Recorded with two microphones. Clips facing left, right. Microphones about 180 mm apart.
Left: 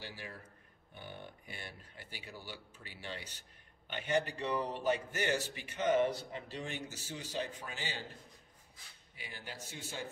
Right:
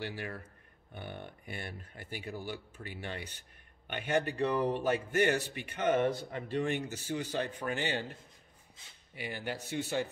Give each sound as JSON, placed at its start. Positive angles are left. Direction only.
{"t": 0.0, "sound": "speech", "side_deg": -65}
{"t": 9.1, "sound": "speech", "side_deg": -65}